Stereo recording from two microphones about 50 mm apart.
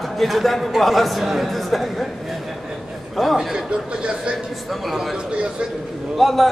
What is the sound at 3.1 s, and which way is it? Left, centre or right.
Speech, centre.